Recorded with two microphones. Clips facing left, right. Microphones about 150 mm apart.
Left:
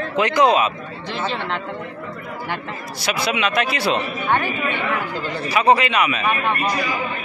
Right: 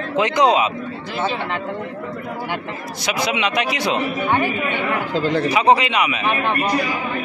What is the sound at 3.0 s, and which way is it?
A man's voice, 15° right (ahead or behind).